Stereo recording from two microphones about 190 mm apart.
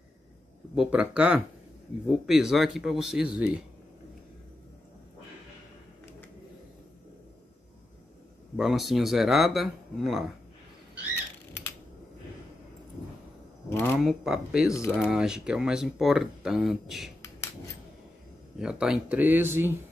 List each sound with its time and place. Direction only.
0.7 s speech: 5° right (ahead or behind)
8.5 s speech: centre (ahead or behind)
13.7 s speech: 10° left (ahead or behind)
13.9 s speech: centre (ahead or behind)
14.7 s speech: 15° left (ahead or behind)
15.0 s speech: centre (ahead or behind)
18.6 s speech: 5° right (ahead or behind)